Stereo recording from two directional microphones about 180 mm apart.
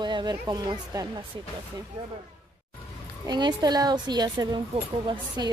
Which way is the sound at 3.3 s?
25° right (ahead or behind).